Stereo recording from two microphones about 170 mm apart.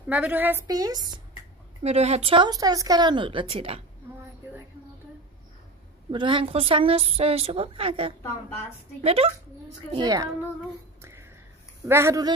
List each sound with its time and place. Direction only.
0.1 s a woman's voice: 10° right (ahead or behind)
1.8 s speech: 40° right (ahead or behind)
6.1 s speech: 30° right (ahead or behind)
9.9 s a child's voice: 20° right (ahead or behind)
11.0 s a sound: 15° right (ahead or behind)
11.8 s a woman's voice: 15° right (ahead or behind)